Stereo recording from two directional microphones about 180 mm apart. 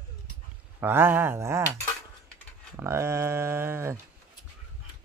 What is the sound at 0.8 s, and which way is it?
Speech, 10° right (ahead or behind).